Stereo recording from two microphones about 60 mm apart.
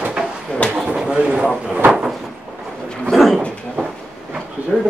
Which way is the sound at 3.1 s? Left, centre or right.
Centre.